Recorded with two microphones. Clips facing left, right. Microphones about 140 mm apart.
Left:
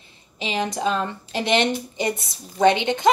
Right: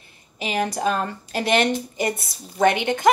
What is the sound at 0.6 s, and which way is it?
Speech, 20° left (ahead or behind).